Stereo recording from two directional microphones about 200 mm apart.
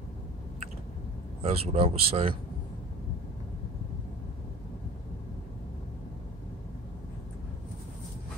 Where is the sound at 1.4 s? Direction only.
30° right (ahead or behind).